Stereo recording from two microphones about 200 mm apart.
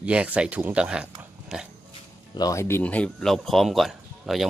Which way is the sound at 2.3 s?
15° left (ahead or behind).